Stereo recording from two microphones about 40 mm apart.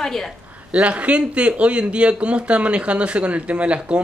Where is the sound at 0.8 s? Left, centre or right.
Right.